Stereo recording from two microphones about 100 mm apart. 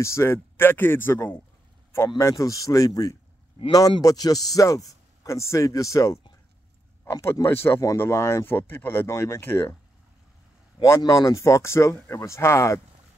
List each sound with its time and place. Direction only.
0.0 s speech: 25° left (ahead or behind)
2.1 s speech: 30° left (ahead or behind)
10.8 s speech: 35° left (ahead or behind)